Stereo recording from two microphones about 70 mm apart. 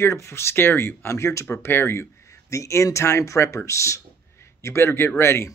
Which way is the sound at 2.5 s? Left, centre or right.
Left.